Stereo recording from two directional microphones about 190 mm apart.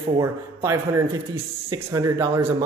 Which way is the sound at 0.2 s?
15° right (ahead or behind).